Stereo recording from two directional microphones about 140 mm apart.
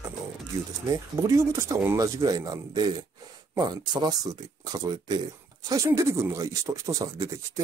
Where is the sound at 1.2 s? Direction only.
20° right (ahead or behind).